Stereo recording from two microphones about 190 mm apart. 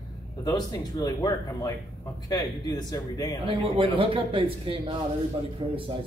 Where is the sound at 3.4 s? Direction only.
30° right (ahead or behind).